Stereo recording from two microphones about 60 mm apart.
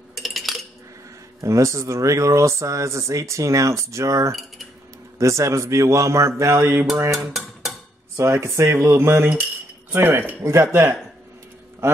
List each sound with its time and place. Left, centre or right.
0.1 s cutlery: centre
1.4 s speech: right
7.0 s speech: right
10.4 s speech: right